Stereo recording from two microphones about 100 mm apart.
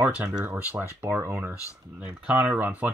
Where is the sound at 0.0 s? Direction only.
20° right (ahead or behind).